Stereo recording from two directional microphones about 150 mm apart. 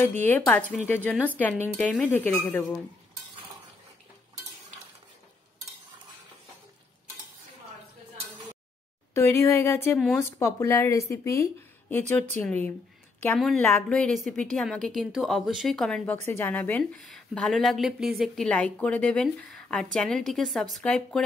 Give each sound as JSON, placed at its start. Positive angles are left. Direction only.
{"t": 0.2, "sound": "a woman's voice", "side_deg": 10}
{"t": 9.1, "sound": "a woman's voice", "side_deg": 20}
{"t": 13.4, "sound": "speech", "side_deg": 5}